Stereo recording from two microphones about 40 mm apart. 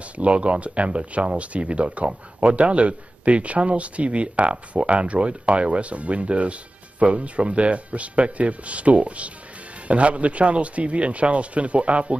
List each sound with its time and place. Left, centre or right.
0.0 s speech: right